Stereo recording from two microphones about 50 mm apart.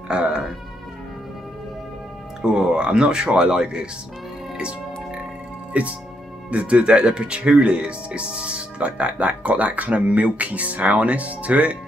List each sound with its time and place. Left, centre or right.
0.1 s speech: centre
2.4 s speech: centre
4.6 s music: centre
5.7 s speech: right